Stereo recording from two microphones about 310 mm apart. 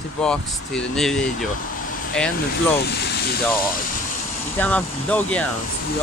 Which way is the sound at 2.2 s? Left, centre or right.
Centre.